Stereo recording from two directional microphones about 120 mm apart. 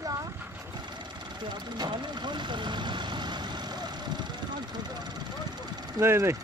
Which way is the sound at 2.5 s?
40° right (ahead or behind).